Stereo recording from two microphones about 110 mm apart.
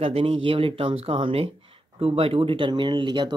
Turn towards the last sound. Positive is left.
turn(degrees=-45)  # may be behind; listen again after turning